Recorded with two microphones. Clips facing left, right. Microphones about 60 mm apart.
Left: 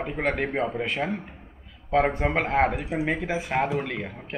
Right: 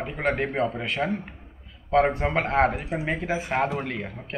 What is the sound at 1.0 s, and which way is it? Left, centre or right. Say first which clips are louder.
Speech: right 4 dB; centre.